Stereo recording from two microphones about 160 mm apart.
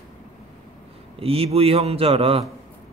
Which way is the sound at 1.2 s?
40° right (ahead or behind).